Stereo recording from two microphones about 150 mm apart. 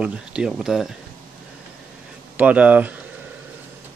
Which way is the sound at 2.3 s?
10° right (ahead or behind).